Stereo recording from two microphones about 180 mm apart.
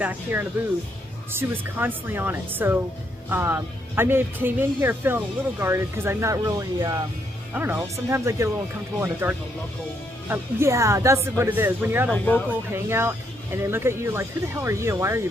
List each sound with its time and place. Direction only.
0.0 s speech: 10° right (ahead or behind)
10.2 s speech: 15° right (ahead or behind)
12.1 s speech: 10° left (ahead or behind)
12.7 s speech: 15° right (ahead or behind)